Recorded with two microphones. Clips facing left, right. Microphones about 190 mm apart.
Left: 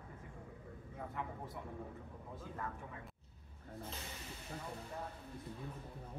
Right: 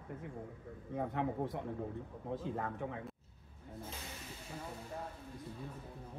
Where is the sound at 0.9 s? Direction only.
75° right (ahead or behind).